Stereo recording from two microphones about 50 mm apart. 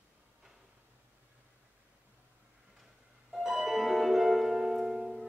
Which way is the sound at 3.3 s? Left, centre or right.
Centre.